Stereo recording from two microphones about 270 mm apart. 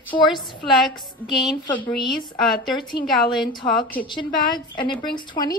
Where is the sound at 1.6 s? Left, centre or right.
Centre.